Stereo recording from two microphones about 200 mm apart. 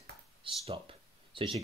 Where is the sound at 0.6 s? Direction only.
25° right (ahead or behind).